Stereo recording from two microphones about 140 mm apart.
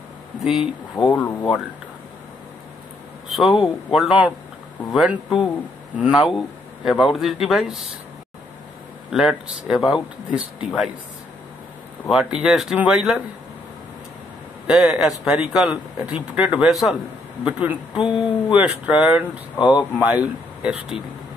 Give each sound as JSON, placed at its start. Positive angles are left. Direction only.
{"t": 0.4, "sound": "speech", "side_deg": 0}
{"t": 0.9, "sound": "speech", "side_deg": 30}
{"t": 3.3, "sound": "a sound", "side_deg": 0}
{"t": 3.6, "sound": "speech", "side_deg": 0}
{"t": 5.9, "sound": "a sound", "side_deg": -10}
{"t": 6.8, "sound": "speech", "side_deg": 0}
{"t": 9.1, "sound": "speech", "side_deg": -5}
{"t": 12.1, "sound": "speech", "side_deg": -5}
{"t": 14.7, "sound": "speech", "side_deg": -5}
{"t": 17.5, "sound": "a sound", "side_deg": -10}
{"t": 19.6, "sound": "speech", "side_deg": 30}
{"t": 20.0, "sound": "speech", "side_deg": -10}